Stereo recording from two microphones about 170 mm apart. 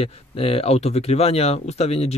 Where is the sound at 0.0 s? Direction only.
35° left (ahead or behind).